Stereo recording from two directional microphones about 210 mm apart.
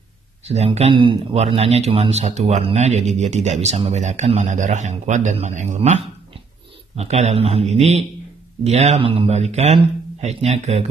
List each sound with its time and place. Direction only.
0.5 s speech: 30° right (ahead or behind)